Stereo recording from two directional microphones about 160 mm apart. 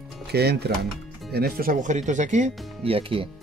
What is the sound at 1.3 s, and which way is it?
Speech, 75° right (ahead or behind).